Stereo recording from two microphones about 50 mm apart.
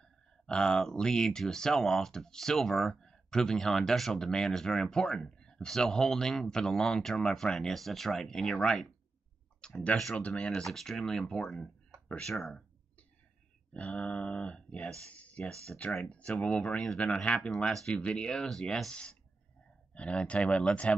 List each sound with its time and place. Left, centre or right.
0.0 s speech: centre
9.6 s clicking: centre
9.9 s speech: centre
13.7 s speech: left
15.5 s speech: centre